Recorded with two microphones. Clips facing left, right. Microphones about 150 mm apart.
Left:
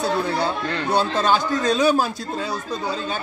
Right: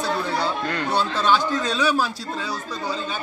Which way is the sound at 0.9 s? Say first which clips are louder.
Left 2 dB; 45° left (ahead or behind).